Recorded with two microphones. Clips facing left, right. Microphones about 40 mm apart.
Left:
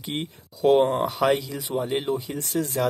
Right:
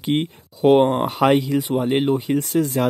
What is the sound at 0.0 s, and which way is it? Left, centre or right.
Speech, right.